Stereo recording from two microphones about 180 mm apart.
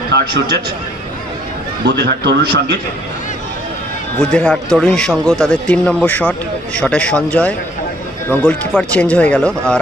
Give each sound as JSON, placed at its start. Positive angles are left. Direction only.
{"t": 0.1, "sound": "a sound", "side_deg": -75}
{"t": 1.9, "sound": "a man's voice", "side_deg": -65}
{"t": 4.2, "sound": "a man's voice", "side_deg": 5}